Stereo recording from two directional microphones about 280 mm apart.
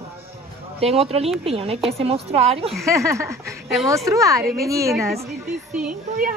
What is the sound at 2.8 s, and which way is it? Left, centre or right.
Speech, centre.